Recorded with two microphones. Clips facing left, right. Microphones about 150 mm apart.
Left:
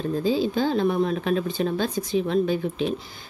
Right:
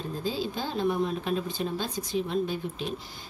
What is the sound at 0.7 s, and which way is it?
A woman's voice, 75° left (ahead or behind).